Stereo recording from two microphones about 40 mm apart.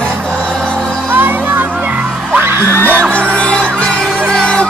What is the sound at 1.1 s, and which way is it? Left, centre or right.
Music, right.